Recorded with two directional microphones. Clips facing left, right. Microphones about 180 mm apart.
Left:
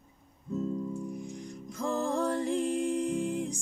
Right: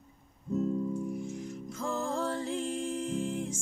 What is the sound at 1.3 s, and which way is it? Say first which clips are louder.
Music: right 3 dB; 5° right (ahead or behind).